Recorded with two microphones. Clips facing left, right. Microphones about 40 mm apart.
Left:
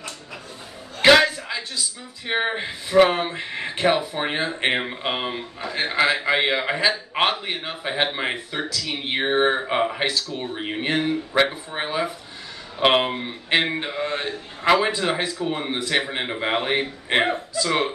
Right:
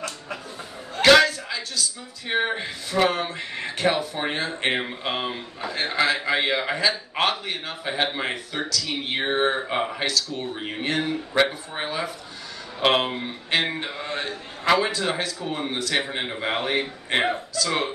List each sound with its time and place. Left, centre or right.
1.0 s a man's voice: centre